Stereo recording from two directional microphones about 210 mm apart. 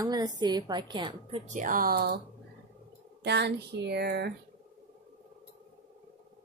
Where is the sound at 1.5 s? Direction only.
40° right (ahead or behind).